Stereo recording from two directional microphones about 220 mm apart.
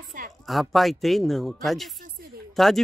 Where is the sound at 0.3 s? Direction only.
Centre (ahead or behind).